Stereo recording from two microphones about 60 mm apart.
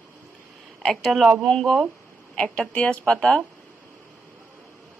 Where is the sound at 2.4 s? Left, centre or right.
Centre.